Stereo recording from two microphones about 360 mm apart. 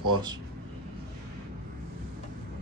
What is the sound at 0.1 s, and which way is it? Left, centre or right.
Speech, centre.